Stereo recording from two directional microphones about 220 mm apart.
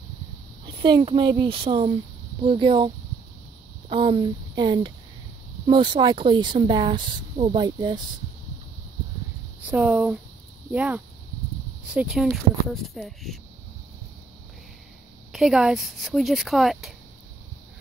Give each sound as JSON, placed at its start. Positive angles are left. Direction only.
{"t": 0.7, "sound": "speech", "side_deg": -20}
{"t": 3.9, "sound": "speech", "side_deg": -25}
{"t": 9.7, "sound": "speech", "side_deg": -5}
{"t": 15.3, "sound": "speech", "side_deg": 0}